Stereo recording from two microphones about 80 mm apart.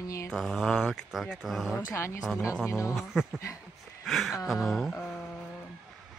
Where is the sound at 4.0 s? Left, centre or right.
Centre.